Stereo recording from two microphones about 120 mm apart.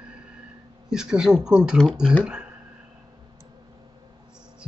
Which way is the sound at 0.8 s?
5° right (ahead or behind).